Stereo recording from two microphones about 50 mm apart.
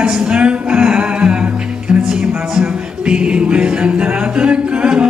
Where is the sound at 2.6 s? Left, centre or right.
Centre.